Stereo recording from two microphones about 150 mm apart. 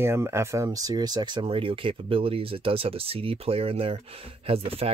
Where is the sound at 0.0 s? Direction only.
15° right (ahead or behind).